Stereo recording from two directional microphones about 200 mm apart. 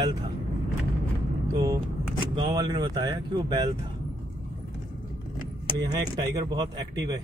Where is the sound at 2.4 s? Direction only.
20° right (ahead or behind).